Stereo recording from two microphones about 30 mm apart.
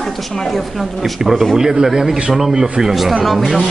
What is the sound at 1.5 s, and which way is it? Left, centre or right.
A man's voice, centre.